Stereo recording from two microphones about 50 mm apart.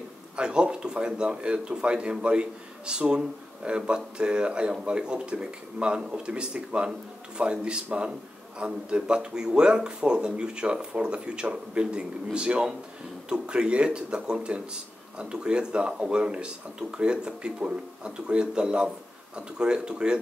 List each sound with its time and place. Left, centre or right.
0.4 s a man's voice: centre